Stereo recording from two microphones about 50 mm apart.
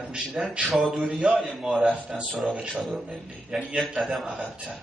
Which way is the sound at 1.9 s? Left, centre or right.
Right.